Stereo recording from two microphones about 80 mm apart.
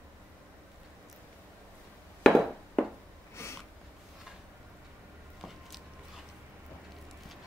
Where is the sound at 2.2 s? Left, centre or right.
Centre.